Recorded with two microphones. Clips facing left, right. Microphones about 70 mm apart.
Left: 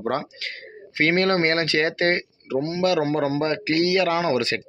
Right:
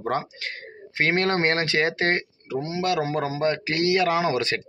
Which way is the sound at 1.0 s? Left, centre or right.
Right.